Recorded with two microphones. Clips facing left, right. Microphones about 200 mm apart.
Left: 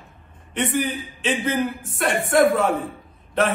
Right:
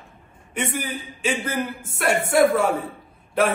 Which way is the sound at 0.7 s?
Centre (ahead or behind).